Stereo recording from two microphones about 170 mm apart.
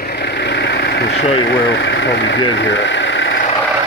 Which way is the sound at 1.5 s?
90° left.